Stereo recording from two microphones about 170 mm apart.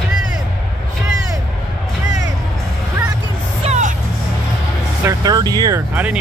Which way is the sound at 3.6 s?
40° right (ahead or behind).